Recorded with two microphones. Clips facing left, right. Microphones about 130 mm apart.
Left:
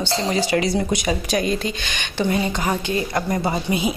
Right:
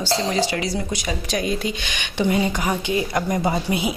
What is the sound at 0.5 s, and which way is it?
Speech, 45° left (ahead or behind).